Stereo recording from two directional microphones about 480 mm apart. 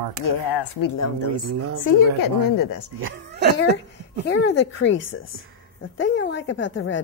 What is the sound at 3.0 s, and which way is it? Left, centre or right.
Speech, right.